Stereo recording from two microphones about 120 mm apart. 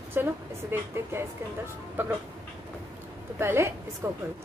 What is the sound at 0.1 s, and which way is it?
A woman's voice, 20° right (ahead or behind).